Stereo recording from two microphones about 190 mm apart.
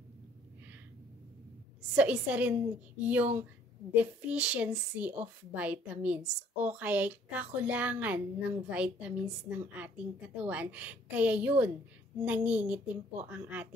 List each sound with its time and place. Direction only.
1.8 s a woman's voice: 5° right (ahead or behind)